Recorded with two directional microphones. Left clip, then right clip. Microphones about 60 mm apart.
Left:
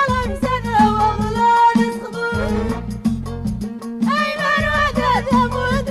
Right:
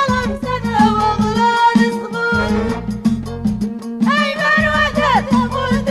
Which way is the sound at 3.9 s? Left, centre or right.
Left.